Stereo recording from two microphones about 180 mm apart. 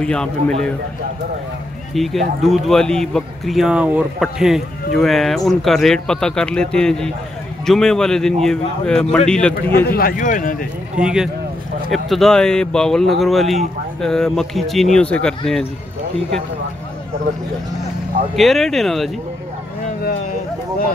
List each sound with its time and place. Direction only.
0.0 s speech: 5° left (ahead or behind)
2.0 s speech: centre (ahead or behind)
9.8 s speech: 55° left (ahead or behind)
11.0 s speech: 5° right (ahead or behind)
18.3 s speech: centre (ahead or behind)